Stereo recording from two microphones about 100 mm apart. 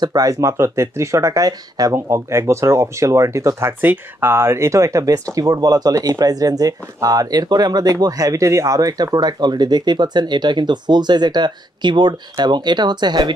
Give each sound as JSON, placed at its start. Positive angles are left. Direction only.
{"t": 0.0, "sound": "speech", "side_deg": -40}